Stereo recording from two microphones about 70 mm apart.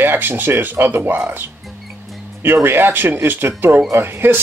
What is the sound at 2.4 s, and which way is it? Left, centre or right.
Speech, right.